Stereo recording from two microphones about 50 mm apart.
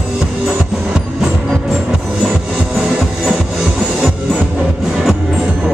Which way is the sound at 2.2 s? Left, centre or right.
Centre.